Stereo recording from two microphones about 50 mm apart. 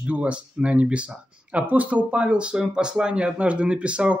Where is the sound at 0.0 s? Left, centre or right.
Right.